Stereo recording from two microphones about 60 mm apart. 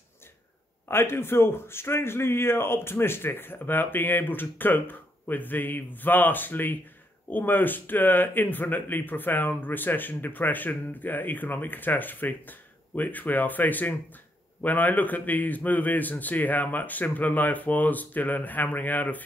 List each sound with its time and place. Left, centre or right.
0.8 s a man's voice: left